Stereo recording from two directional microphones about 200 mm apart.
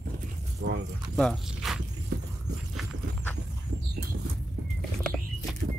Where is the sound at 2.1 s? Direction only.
50° right (ahead or behind).